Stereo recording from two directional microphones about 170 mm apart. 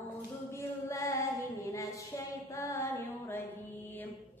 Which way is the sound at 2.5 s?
15° left (ahead or behind).